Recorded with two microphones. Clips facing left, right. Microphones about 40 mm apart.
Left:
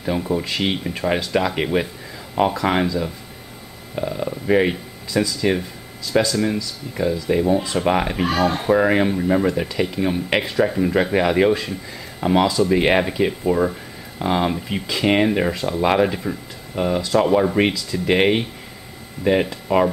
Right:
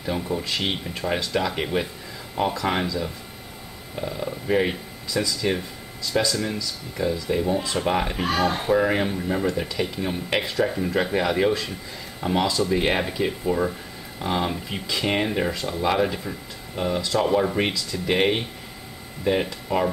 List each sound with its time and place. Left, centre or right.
0.0 s speech: centre
8.3 s speech: centre
8.7 s speech: centre
15.8 s speech: left
16.1 s speech: centre
19.7 s speech: centre